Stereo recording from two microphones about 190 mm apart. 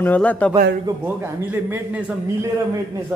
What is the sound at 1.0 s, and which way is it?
A man's voice, 10° right (ahead or behind).